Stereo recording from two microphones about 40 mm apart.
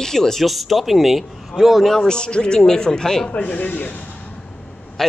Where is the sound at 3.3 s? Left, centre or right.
Left.